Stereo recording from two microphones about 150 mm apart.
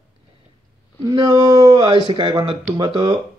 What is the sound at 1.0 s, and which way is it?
Speech, 25° right (ahead or behind).